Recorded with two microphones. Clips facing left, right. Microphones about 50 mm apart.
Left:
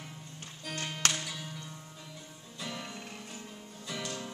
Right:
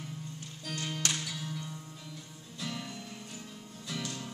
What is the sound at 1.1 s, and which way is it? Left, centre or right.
Music, centre.